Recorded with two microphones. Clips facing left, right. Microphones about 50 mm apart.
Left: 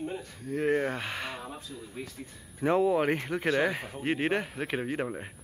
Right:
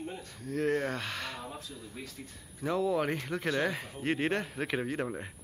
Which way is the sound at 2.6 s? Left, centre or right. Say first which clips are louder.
Left 5 dB; left.